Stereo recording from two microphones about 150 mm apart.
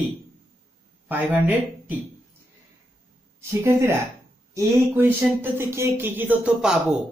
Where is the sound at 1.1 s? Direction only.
10° right (ahead or behind).